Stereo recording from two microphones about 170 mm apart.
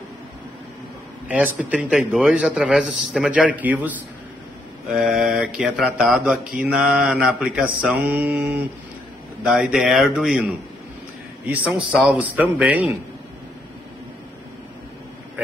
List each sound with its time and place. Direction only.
1.3 s a man's voice: 5° right (ahead or behind)
3.1 s mantra: 5° right (ahead or behind)
4.9 s a man's voice: centre (ahead or behind)
5.9 s mantra: 5° right (ahead or behind)
9.5 s a man's voice: 5° right (ahead or behind)
11.4 s mantra: 10° right (ahead or behind)